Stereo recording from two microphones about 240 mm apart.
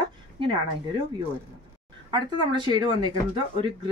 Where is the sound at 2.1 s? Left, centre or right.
Centre.